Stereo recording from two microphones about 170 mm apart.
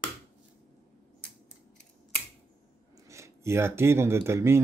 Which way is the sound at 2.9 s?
15° right (ahead or behind).